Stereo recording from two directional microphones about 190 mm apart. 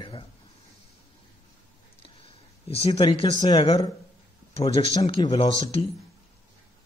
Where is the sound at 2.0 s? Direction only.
30° left (ahead or behind).